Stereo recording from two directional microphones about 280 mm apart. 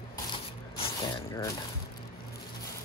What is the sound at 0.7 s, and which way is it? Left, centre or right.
Ratchet, centre.